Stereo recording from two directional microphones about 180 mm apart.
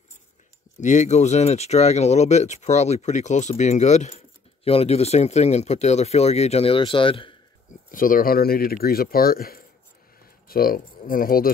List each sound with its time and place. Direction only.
0.7 s speech: 40° left (ahead or behind)
7.9 s speech: 50° left (ahead or behind)